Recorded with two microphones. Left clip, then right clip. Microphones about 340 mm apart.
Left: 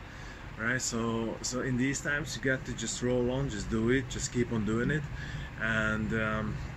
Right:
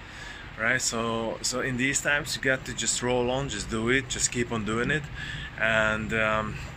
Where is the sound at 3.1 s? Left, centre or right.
Right.